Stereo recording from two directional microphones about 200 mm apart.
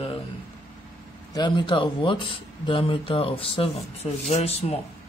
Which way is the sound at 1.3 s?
20° left (ahead or behind).